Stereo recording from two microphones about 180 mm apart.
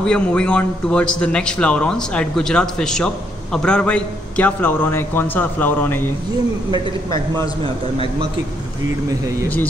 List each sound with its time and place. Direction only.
0.0 s a man's voice: 5° left (ahead or behind)